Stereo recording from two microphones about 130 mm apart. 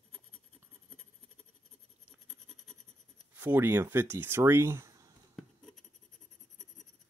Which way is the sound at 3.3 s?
15° right (ahead or behind).